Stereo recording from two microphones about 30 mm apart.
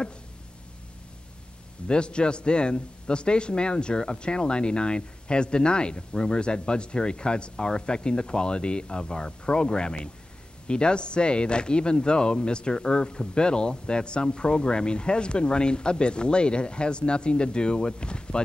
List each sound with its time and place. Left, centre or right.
1.9 s speech: left